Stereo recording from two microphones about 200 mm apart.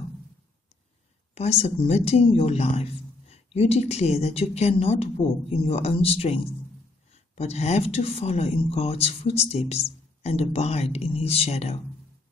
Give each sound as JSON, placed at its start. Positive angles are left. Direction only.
{"t": 1.3, "sound": "speech", "side_deg": 30}